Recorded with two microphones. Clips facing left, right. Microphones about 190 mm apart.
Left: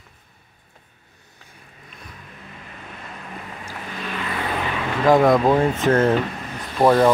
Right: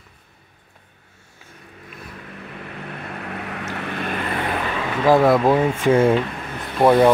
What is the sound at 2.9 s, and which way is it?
Vehicle, 65° right (ahead or behind).